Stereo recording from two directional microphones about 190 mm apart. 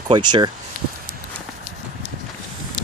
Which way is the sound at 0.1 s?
25° right (ahead or behind).